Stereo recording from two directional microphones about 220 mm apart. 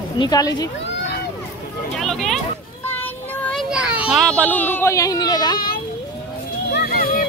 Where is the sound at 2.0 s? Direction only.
Centre (ahead or behind).